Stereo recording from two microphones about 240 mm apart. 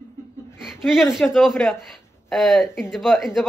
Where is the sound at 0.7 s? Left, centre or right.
Centre.